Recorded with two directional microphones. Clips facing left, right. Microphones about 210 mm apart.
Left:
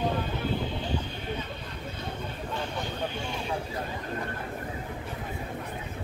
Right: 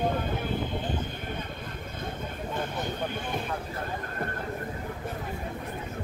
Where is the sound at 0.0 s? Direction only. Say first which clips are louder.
Right 1 dB; 50° right (ahead or behind).